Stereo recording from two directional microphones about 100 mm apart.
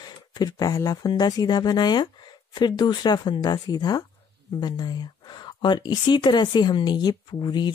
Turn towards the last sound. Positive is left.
turn(degrees=45)  # may be behind; listen again after turning